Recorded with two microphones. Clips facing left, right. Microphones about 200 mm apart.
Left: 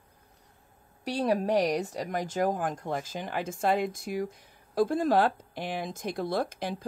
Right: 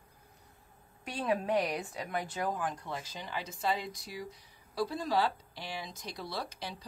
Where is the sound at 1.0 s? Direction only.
40° left (ahead or behind).